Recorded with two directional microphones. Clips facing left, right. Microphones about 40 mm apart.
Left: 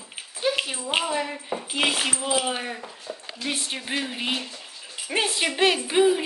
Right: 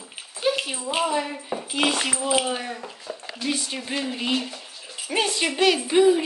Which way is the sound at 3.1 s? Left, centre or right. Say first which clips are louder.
Right 1 dB; right.